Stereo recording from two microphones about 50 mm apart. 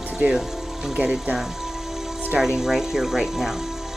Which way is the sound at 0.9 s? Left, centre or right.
Right.